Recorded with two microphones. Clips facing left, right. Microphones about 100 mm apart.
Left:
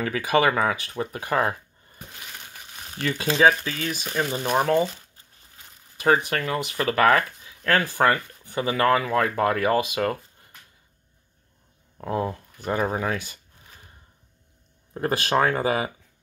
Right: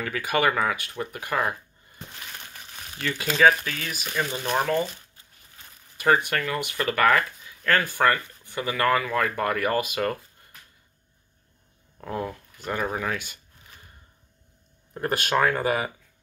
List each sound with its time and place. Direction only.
0.0 s speech: 25° left (ahead or behind)
3.1 s speech: 25° left (ahead or behind)
5.9 s a sound: 20° left (ahead or behind)
6.2 s speech: 30° left (ahead or behind)
7.4 s speech: 25° left (ahead or behind)
12.0 s speech: 25° left (ahead or behind)
15.0 s speech: 30° left (ahead or behind)